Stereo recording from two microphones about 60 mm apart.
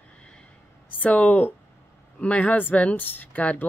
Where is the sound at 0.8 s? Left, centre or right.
Left.